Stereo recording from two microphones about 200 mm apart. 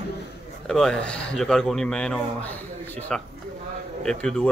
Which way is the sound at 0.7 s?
5° left (ahead or behind).